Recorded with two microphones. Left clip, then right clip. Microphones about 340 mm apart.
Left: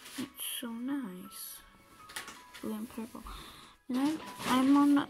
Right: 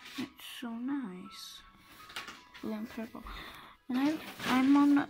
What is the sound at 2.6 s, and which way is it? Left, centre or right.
Speech, centre.